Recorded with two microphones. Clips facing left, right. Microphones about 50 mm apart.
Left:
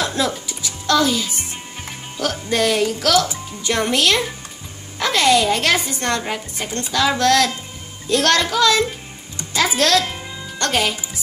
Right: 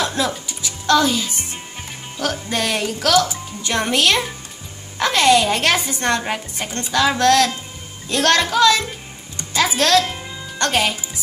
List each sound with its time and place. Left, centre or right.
0.2 s a woman's voice: centre
10.0 s music: centre
10.6 s a woman's voice: centre